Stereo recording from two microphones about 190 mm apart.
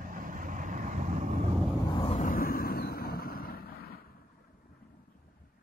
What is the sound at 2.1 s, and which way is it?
Vehicle, 45° left (ahead or behind).